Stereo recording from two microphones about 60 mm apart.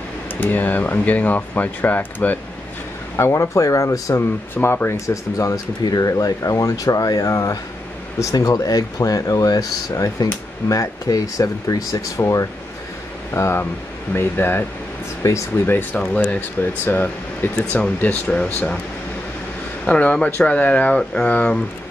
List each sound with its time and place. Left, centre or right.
0.4 s speech: left
3.2 s speech: left
4.6 s speech: left
4.8 s speech: left
10.7 s speech: left
12.2 s speech: left
13.3 s speech: left
15.2 s speech: left
15.6 s speech: left
19.8 s speech: left